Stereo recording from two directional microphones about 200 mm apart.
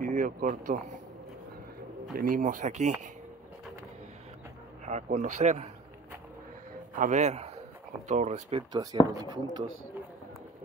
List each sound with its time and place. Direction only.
0.0 s speech: 40° right (ahead or behind)
2.1 s speech: 45° right (ahead or behind)
4.8 s speech: 35° right (ahead or behind)
7.0 s a man's voice: 35° right (ahead or behind); by 9.7 s 20° right (ahead or behind)